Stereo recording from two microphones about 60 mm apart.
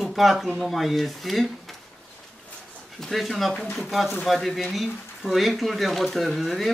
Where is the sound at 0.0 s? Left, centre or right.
Centre.